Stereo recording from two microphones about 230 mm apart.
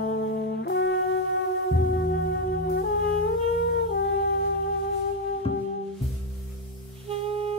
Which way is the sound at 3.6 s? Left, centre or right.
Left.